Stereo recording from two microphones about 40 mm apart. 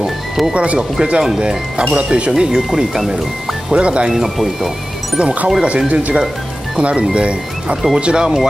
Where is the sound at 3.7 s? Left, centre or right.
Right.